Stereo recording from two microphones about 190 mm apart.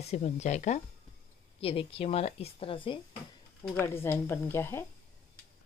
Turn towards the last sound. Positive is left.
turn(degrees=10)  # may be behind; listen again after turning